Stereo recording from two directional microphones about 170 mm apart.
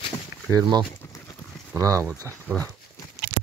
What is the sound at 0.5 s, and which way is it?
Speech, 25° right (ahead or behind).